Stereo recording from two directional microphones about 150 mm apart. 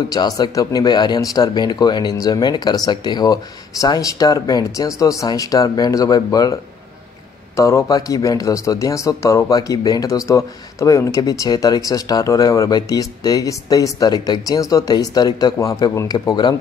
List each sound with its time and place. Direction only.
0.1 s speech: 25° left (ahead or behind)